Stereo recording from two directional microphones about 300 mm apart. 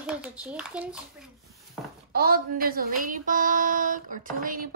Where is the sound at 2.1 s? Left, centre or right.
Right.